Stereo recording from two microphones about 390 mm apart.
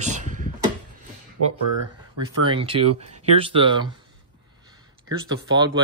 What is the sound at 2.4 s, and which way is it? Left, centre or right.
Speech, centre.